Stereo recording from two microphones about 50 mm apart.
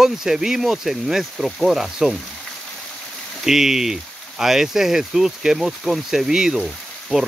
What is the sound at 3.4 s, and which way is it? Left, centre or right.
Speech, centre.